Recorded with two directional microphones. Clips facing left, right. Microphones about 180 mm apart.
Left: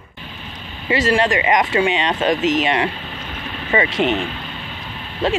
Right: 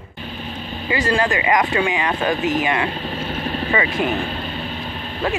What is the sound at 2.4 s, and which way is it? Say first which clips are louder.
Speech: left 2 dB; 90° left.